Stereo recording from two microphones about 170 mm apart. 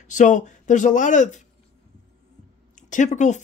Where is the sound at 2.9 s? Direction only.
45° left (ahead or behind).